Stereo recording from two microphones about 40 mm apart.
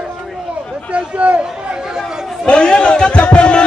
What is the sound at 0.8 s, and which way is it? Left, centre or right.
Speech, right.